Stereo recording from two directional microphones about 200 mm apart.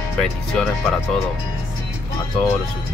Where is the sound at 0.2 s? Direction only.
Centre (ahead or behind).